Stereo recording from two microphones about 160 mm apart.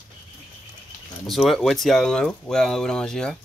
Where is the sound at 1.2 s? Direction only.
Centre (ahead or behind).